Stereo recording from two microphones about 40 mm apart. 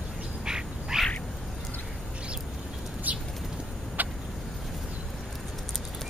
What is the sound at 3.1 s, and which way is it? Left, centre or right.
Bird, right.